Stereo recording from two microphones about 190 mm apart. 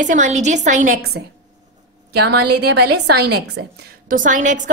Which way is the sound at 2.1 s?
60° right (ahead or behind).